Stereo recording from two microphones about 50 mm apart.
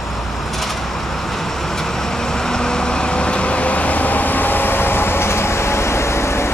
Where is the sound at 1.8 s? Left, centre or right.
Centre.